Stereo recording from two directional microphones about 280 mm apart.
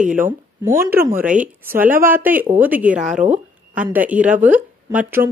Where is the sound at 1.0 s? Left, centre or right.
Centre.